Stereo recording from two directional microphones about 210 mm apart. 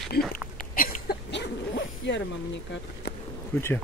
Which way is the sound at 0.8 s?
45° left (ahead or behind).